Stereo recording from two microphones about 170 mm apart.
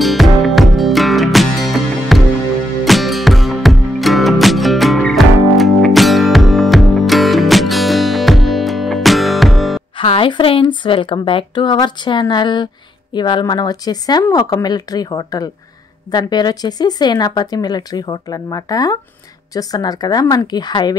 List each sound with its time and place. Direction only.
0.0 s music: centre (ahead or behind)
9.9 s speech: 35° left (ahead or behind)